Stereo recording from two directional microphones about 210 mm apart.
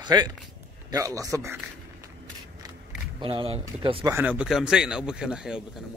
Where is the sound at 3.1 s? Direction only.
25° right (ahead or behind).